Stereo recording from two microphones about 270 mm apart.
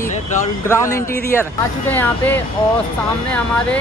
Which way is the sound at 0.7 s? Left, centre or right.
Centre.